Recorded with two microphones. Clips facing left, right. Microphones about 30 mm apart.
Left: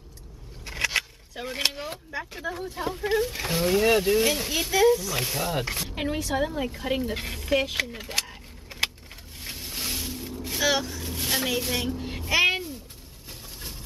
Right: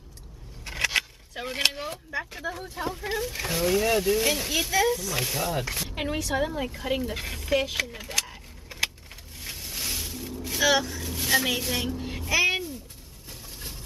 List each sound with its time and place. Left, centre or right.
0.7 s a sound: centre
1.3 s a woman's voice: centre
4.2 s a woman's voice: centre
5.8 s a woman's voice: centre
9.7 s vehicle: centre
11.6 s a woman's voice: centre
11.9 s a sound: centre
12.3 s speech: left